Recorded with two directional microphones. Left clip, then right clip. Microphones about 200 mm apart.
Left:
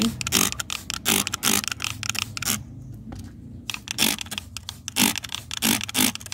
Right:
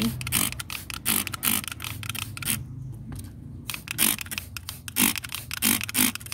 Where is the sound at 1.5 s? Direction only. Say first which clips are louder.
Left 6 dB; 20° left (ahead or behind).